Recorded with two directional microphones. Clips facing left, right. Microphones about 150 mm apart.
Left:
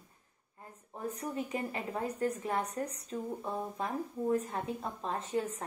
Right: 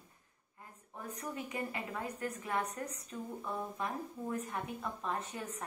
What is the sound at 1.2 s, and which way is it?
A woman's voice, 35° left (ahead or behind).